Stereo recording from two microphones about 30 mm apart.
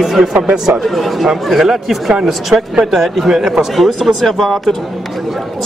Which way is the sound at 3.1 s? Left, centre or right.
Centre.